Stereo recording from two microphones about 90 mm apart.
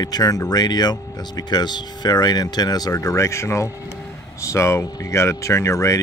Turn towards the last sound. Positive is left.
turn(degrees=35)  # may be behind; listen again after turning